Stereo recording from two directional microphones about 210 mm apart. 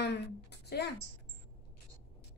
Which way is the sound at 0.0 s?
50° left (ahead or behind).